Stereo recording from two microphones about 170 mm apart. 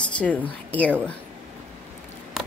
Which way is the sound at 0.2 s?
10° left (ahead or behind).